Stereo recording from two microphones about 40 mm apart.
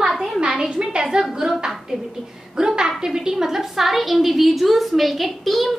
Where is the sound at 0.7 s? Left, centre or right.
Right.